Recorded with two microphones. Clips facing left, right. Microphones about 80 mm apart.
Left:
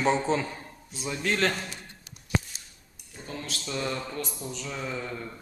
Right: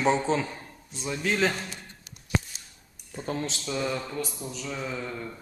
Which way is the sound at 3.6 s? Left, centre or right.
Centre.